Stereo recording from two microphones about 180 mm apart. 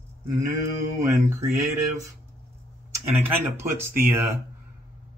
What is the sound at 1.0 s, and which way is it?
Speech, 15° right (ahead or behind).